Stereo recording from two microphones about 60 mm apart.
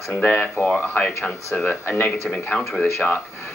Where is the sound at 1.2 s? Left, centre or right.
Centre.